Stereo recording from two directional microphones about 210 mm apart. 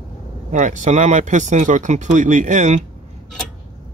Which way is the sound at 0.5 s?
35° right (ahead or behind).